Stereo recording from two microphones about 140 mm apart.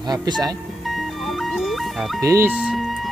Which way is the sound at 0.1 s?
30° right (ahead or behind).